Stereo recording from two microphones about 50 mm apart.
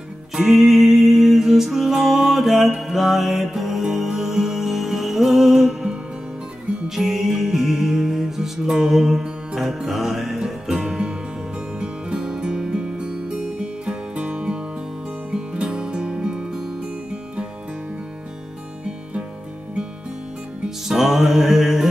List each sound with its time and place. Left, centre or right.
0.4 s music: centre
7.0 s music: centre
10.7 s music: centre
20.9 s music: centre